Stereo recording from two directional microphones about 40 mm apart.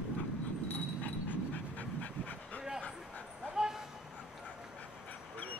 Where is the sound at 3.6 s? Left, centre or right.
Centre.